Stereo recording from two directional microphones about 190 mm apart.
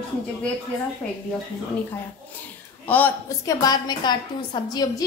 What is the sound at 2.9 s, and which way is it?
Speech, 10° left (ahead or behind).